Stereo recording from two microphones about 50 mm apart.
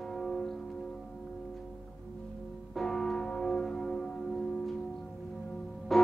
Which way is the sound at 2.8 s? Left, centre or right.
Centre.